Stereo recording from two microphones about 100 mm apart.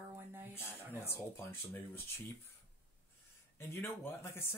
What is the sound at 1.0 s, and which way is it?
Speech, 25° left (ahead or behind).